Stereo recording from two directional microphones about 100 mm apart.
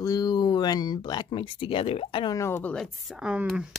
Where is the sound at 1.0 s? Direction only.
50° left (ahead or behind).